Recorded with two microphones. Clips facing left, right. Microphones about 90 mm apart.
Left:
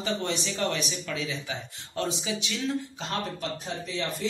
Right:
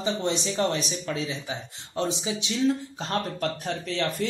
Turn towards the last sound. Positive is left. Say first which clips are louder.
# right 3 dB
turn(degrees=-70)  # may be behind; listen again after turning